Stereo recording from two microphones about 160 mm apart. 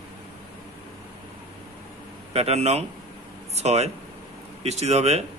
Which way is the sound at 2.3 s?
40° right (ahead or behind).